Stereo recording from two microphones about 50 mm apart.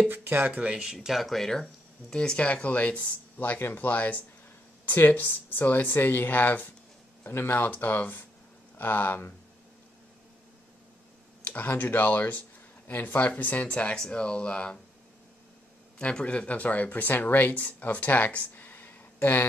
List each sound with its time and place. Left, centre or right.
0.1 s speech: right
0.6 s speech: right
0.8 s speech: centre
2.3 s speech: left
7.2 s speech: left
7.5 s speech: left
11.4 s speech: left
13.9 s speech: centre
16.0 s speech: left